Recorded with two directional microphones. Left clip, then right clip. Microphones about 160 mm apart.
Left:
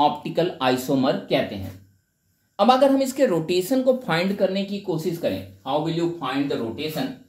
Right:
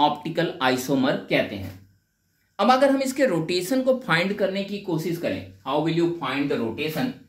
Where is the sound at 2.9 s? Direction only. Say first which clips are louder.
Left 2 dB; 45° left (ahead or behind).